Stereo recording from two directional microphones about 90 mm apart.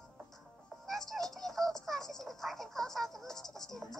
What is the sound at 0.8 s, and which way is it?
Music, 5° left (ahead or behind).